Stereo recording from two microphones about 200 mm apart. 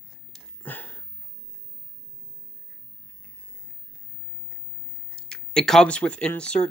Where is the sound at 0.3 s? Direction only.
10° left (ahead or behind).